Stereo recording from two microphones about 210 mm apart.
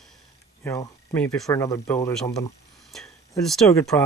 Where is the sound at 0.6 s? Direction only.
10° left (ahead or behind).